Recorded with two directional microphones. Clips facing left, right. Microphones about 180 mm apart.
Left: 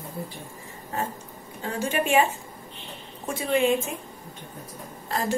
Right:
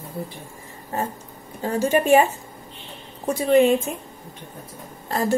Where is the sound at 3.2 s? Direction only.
40° right (ahead or behind).